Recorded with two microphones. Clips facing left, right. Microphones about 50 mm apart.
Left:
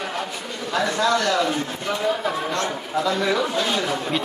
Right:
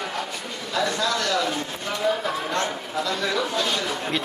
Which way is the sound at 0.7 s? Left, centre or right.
Left.